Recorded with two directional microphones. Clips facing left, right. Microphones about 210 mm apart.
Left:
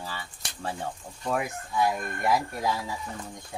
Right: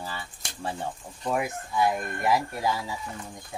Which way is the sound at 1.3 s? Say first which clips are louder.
Right 1 dB; centre (ahead or behind).